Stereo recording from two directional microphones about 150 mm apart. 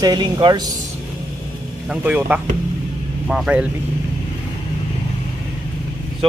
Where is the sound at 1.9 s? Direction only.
10° right (ahead or behind).